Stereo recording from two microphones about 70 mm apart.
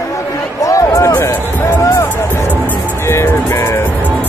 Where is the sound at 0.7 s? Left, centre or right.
Left.